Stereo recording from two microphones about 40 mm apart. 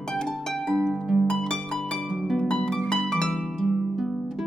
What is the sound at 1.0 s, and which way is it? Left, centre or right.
Harp, centre.